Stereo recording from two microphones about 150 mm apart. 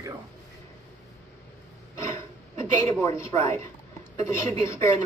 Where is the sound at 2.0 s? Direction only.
20° left (ahead or behind).